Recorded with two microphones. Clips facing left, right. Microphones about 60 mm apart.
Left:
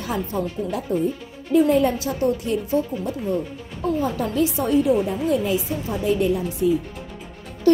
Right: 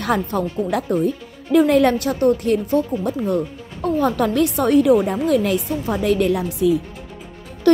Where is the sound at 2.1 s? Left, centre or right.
Right.